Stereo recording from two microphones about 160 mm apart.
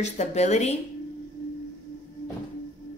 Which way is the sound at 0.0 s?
45° left (ahead or behind).